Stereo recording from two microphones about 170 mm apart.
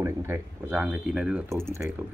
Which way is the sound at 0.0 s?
15° right (ahead or behind).